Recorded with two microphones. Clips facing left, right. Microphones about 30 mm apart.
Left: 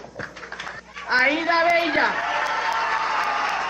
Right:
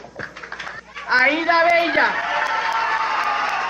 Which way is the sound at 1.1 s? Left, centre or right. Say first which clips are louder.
Right 3 dB; centre.